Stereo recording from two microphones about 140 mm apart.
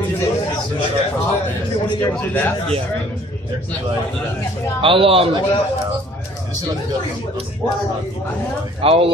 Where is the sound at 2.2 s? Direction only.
10° left (ahead or behind).